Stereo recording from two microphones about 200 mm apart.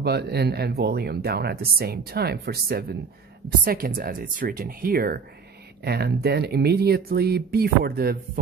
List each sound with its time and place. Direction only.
0.0 s speech: 55° right (ahead or behind)